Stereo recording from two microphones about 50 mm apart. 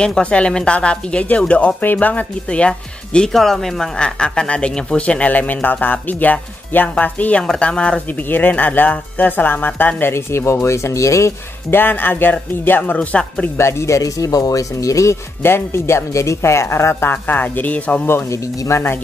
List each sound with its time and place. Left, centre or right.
0.0 s speech: centre
2.4 s speech: left
3.3 s speech: centre
4.0 s speech: centre
5.3 s speech: left
7.4 s speech: centre
8.1 s speech: left
9.9 s speech: left
11.7 s speech: left
13.0 s speech: left
13.6 s speech: left
15.4 s speech: left
17.1 s speech: left
18.3 s speech: left